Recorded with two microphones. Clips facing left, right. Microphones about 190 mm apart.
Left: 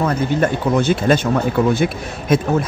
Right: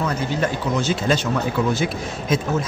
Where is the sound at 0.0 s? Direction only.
55° left (ahead or behind).